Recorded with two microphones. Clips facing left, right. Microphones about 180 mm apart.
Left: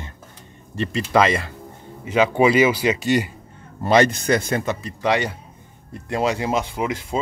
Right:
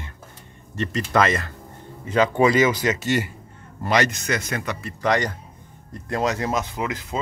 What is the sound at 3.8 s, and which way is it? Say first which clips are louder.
Speech: left 5 dB; 25° left (ahead or behind).